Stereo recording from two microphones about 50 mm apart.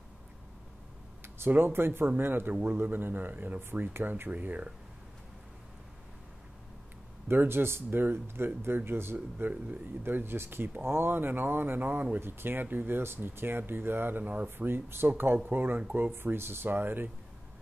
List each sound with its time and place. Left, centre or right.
1.5 s speech: right
2.5 s a man's voice: right
2.8 s speech: right
7.2 s speech: right
12.2 s speech: right